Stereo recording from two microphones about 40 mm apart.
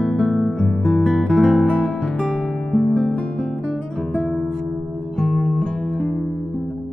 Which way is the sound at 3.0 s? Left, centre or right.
Left.